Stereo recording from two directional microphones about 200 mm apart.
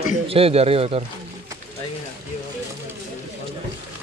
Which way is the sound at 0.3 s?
30° right (ahead or behind).